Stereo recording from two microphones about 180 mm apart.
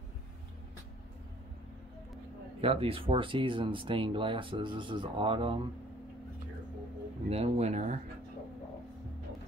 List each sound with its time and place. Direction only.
2.6 s speech: 30° right (ahead or behind)
7.2 s speech: 35° right (ahead or behind)